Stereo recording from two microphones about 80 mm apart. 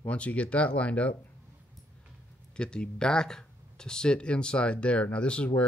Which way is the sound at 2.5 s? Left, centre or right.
Centre.